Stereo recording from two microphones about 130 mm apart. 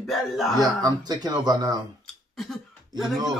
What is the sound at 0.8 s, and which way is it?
Speech, 30° right (ahead or behind).